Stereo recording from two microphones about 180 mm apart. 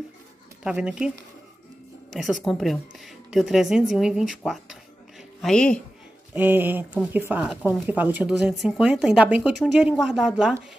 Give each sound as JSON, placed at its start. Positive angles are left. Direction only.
{"t": 0.7, "sound": "a woman's voice", "side_deg": -5}
{"t": 2.1, "sound": "a woman's voice", "side_deg": 0}
{"t": 5.4, "sound": "a woman's voice", "side_deg": 5}
{"t": 6.3, "sound": "a woman's voice", "side_deg": -10}